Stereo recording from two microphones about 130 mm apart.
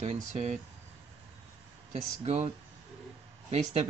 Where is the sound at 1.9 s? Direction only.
50° right (ahead or behind).